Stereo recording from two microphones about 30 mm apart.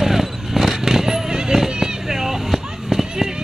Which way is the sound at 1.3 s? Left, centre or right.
Right.